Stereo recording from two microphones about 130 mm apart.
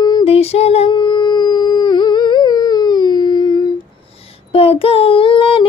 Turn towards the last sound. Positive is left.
turn(degrees=40)  # may be behind; listen again after turning